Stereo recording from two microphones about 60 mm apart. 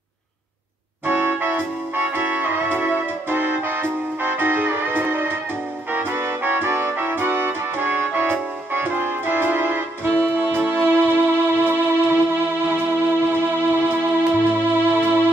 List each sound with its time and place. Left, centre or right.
1.0 s music: right